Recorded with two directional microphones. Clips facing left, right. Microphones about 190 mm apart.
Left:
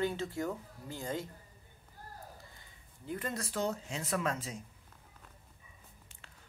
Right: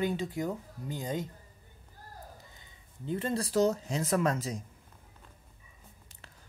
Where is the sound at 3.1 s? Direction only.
30° right (ahead or behind).